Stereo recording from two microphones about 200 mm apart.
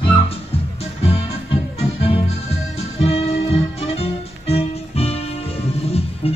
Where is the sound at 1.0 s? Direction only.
30° left (ahead or behind).